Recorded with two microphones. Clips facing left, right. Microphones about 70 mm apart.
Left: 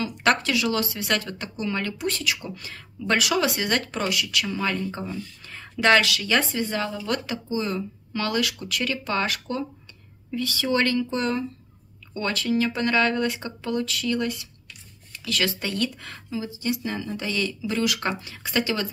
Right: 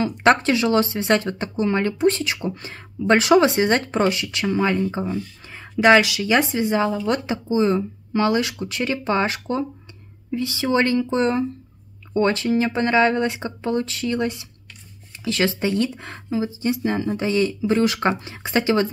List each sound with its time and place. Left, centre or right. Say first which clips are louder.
0.0 s speech: right 6 dB; right